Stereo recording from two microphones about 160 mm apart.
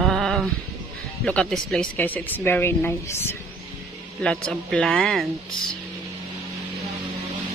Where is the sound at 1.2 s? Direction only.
5° left (ahead or behind).